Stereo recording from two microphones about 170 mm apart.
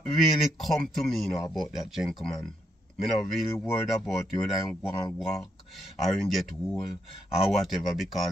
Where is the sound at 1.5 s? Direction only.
Centre (ahead or behind).